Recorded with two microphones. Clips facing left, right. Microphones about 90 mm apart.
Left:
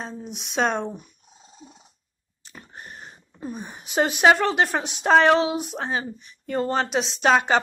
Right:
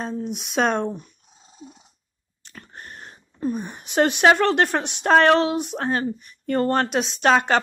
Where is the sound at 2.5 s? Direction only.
5° left (ahead or behind).